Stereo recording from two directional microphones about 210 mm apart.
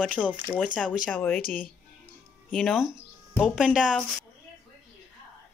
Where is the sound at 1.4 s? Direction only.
45° left (ahead or behind).